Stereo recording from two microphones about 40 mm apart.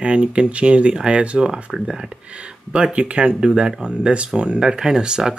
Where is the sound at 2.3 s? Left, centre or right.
Right.